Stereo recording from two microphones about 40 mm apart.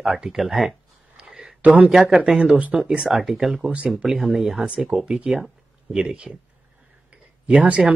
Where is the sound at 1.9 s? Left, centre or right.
Centre.